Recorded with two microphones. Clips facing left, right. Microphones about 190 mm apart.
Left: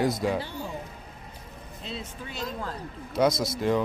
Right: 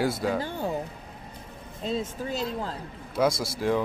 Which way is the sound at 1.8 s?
45° right (ahead or behind).